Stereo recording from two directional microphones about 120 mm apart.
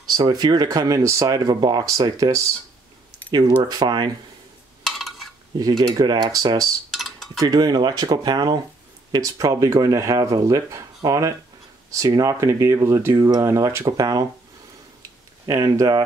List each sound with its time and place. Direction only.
0.1 s speech: 35° right (ahead or behind)
4.8 s a sound: centre (ahead or behind)
5.6 s speech: 30° right (ahead or behind)
6.9 s cutlery: centre (ahead or behind)
7.3 s speech: 35° right (ahead or behind)
15.0 s a sound: 30° right (ahead or behind)